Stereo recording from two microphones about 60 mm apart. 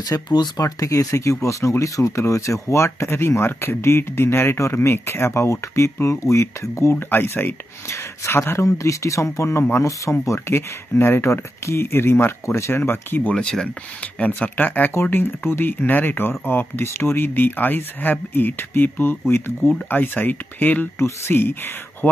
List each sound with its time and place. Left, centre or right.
0.0 s speech: left
7.1 s speech: left
8.6 s speech: left
11.0 s speech: left
11.6 s speech: left
13.3 s speech: centre
15.0 s speech: left
19.9 s speech: left